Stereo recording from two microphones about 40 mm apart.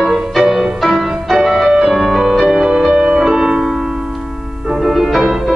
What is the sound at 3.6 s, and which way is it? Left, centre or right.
Music, centre.